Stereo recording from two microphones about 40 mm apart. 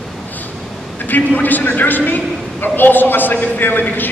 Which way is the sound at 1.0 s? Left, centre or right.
Left.